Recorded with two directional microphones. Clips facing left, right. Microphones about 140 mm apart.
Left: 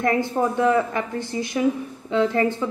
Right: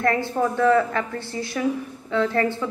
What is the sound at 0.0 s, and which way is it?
A woman's voice, 20° left (ahead or behind).